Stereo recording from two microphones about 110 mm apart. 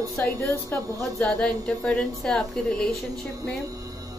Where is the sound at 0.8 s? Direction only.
30° right (ahead or behind).